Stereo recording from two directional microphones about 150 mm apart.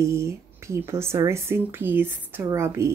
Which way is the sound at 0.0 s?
20° right (ahead or behind).